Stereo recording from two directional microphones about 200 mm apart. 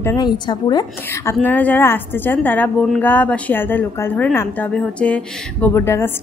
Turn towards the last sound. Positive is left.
turn(degrees=10)  # may be behind; listen again after turning